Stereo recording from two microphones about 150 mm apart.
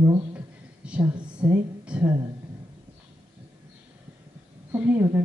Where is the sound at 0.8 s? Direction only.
5° right (ahead or behind).